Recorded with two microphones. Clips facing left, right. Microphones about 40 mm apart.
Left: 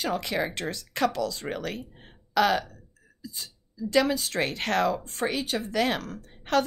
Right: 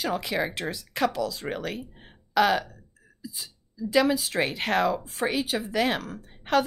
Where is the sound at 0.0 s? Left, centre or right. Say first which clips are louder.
Right 1 dB; centre.